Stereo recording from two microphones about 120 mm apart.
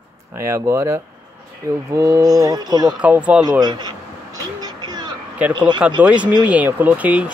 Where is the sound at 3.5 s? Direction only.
35° right (ahead or behind).